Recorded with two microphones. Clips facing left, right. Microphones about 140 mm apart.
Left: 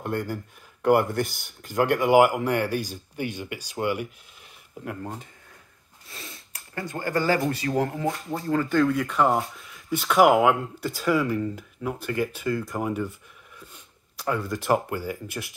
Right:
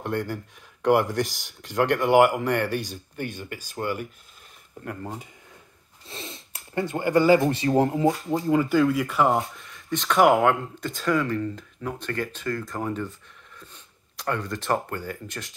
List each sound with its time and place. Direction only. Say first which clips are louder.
0.0 s speech: right 1 dB; 5° left (ahead or behind)
4.8 s speech: even; 5° right (ahead or behind)
6.0 s speech: right 5 dB; 25° right (ahead or behind); by 13.1 s 10° left (ahead or behind)
14.1 s speech: left 1 dB; 5° left (ahead or behind)